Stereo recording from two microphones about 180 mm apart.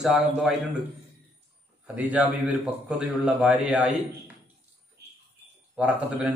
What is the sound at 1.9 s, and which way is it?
A man's voice, 10° right (ahead or behind).